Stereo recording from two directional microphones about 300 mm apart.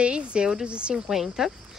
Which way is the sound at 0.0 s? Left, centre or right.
Centre.